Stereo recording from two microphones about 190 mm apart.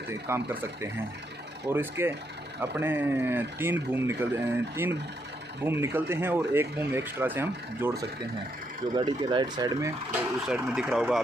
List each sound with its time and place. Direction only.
0.3 s speech: 10° right (ahead or behind)
8.9 s speech: 25° right (ahead or behind)
10.5 s speech: 5° right (ahead or behind)